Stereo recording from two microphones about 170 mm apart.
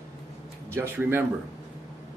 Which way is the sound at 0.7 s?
15° right (ahead or behind).